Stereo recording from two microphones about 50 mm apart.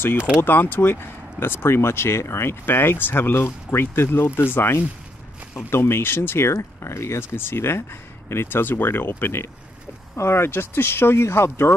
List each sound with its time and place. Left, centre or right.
0.4 s speech: left
7.3 s speech: left